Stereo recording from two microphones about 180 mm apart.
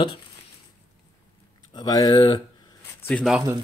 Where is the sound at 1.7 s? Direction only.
20° left (ahead or behind).